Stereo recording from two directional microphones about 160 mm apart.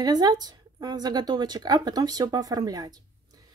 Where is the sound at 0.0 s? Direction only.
25° right (ahead or behind).